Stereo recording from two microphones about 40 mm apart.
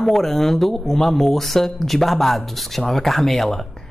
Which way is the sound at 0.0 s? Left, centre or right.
Centre.